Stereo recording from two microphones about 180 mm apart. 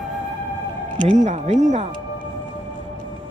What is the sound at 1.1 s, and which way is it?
Speech, 40° right (ahead or behind).